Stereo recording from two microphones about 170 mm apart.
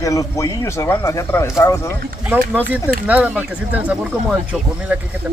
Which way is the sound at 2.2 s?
10° right (ahead or behind).